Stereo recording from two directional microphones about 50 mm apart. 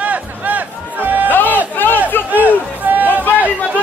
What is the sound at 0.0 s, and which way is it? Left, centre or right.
Music, right.